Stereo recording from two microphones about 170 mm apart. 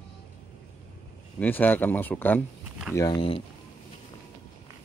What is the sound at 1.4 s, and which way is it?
Speech, 10° left (ahead or behind).